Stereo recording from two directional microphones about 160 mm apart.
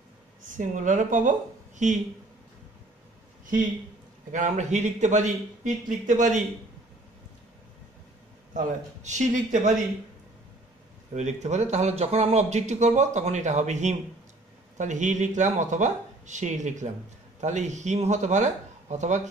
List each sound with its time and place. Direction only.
0.5 s speech: 50° right (ahead or behind)
4.3 s speech: 50° right (ahead or behind)
8.5 s speech: 50° right (ahead or behind)
11.1 s speech: 45° right (ahead or behind)